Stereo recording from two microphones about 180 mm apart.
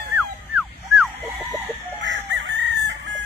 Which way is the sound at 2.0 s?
85° right.